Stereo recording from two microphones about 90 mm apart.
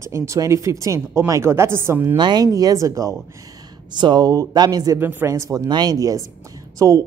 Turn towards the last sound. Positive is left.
turn(degrees=-40)  # may be behind; listen again after turning